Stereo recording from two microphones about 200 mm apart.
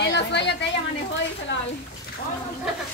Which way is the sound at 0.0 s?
60° left (ahead or behind).